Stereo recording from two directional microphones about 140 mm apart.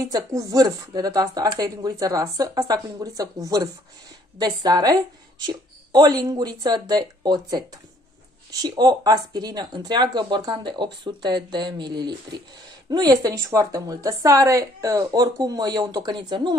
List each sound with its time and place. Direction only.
0.0 s a woman's voice: 25° right (ahead or behind)